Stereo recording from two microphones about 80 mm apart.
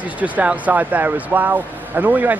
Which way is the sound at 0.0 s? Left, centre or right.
Centre.